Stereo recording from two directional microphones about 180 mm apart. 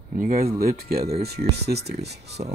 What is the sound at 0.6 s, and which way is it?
Speech, 55° right (ahead or behind).